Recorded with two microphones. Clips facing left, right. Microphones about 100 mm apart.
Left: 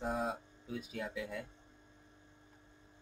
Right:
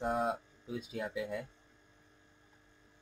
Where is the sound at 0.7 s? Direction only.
20° right (ahead or behind).